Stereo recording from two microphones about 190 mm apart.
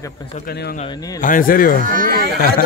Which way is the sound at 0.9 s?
20° left (ahead or behind).